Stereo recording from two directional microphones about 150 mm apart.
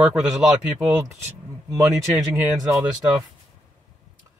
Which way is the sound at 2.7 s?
25° right (ahead or behind).